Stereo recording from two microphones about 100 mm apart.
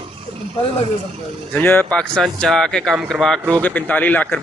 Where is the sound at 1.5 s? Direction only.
15° left (ahead or behind).